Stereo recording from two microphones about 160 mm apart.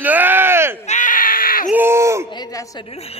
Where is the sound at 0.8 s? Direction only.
50° left (ahead or behind).